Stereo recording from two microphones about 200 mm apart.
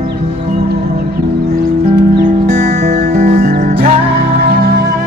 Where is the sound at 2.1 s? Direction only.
45° right (ahead or behind).